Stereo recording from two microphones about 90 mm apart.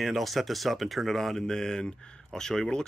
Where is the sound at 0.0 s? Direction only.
Centre (ahead or behind).